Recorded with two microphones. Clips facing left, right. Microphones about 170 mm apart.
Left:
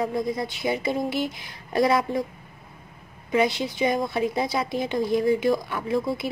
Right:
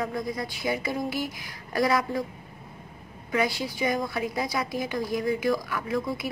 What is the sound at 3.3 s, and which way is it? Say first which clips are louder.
A woman's voice: left 4 dB; 20° left (ahead or behind).